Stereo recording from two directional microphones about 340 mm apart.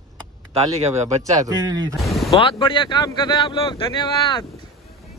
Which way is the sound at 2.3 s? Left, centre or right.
Centre.